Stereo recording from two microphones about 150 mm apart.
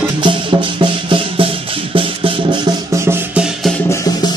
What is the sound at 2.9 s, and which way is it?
Music, 15° right (ahead or behind).